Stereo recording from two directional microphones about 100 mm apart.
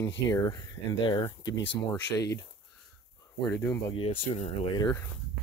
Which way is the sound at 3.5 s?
20° left (ahead or behind).